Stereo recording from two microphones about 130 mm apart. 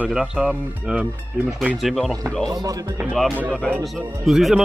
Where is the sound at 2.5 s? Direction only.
25° right (ahead or behind).